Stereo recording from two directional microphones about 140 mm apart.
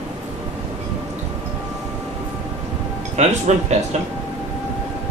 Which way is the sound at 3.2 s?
55° right (ahead or behind).